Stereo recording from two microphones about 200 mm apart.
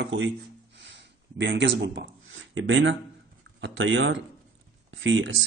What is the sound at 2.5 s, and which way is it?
Speech, 70° right (ahead or behind).